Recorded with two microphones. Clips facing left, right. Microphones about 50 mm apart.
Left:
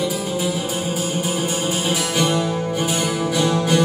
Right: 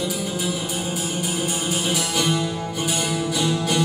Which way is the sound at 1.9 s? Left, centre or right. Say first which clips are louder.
Left 3 dB; left.